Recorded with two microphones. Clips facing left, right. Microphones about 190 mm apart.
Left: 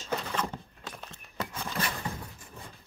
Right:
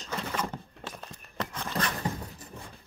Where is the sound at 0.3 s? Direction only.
5° right (ahead or behind).